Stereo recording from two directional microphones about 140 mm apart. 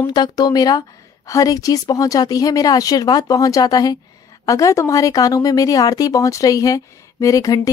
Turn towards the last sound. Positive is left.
turn(degrees=25)  # may be behind; listen again after turning